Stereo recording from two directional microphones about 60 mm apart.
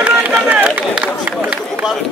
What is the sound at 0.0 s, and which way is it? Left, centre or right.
Run, right.